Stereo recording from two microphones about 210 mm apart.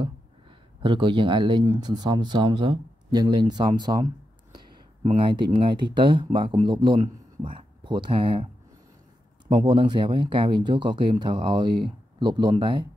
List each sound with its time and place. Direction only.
0.8 s speech: 25° right (ahead or behind)
4.5 s a sound: 20° right (ahead or behind)
5.9 s speech: 20° right (ahead or behind)
9.5 s speech: 25° right (ahead or behind)